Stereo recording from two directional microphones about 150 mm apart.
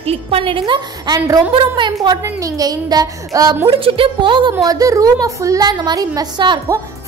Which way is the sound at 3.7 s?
35° right (ahead or behind).